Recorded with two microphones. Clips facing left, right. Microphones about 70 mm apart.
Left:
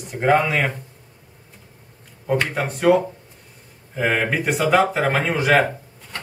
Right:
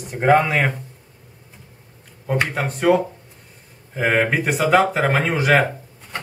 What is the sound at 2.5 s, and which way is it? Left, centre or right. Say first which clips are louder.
Speech: even; centre.